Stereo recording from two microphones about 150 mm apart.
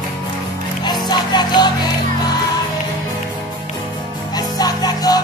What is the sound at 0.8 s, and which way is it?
Music, 30° left (ahead or behind).